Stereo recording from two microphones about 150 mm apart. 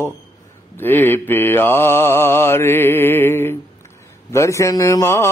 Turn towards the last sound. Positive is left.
turn(degrees=15)  # may be behind; listen again after turning